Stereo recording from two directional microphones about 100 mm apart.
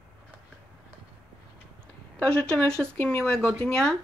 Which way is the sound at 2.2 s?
10° left (ahead or behind).